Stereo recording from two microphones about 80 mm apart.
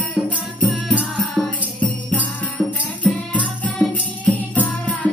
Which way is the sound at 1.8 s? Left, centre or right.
Centre.